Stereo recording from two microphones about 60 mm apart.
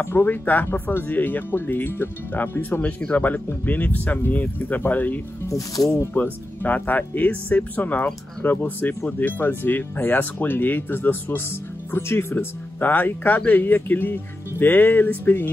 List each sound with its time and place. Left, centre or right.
0.0 s speech: left
3.0 s speech: centre
3.6 s speech: left
5.5 s speech: left
6.1 s speech: left